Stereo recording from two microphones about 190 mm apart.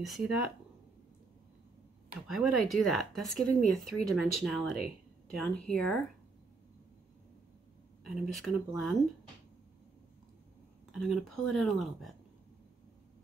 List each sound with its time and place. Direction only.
0.0 s speech: centre (ahead or behind)
2.2 s speech: centre (ahead or behind)
8.0 s speech: centre (ahead or behind)
10.9 s speech: centre (ahead or behind)